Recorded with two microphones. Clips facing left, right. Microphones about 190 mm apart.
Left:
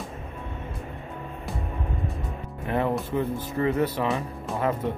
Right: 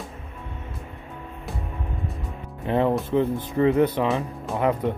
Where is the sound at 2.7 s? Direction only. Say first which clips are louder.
Right 4 dB; 20° right (ahead or behind).